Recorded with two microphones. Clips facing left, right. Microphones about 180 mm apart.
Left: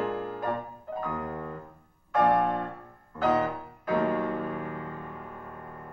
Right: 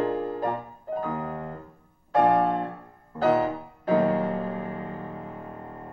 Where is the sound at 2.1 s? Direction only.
30° right (ahead or behind).